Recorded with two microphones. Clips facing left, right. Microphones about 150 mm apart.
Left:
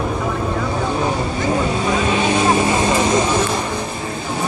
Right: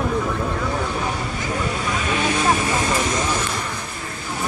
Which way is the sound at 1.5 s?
25° left (ahead or behind).